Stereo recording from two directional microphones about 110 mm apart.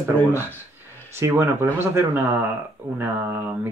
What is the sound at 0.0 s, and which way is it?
Speech, 20° right (ahead or behind).